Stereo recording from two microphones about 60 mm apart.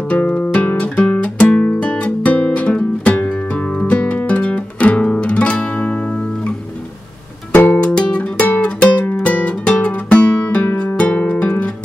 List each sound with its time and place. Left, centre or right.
0.1 s guitar: centre
0.9 s music: left
7.8 s music: centre